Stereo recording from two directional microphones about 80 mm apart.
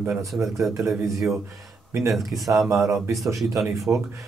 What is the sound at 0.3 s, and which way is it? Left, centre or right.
Speech, centre.